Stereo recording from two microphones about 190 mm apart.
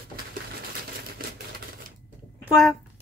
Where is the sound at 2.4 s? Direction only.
Centre (ahead or behind).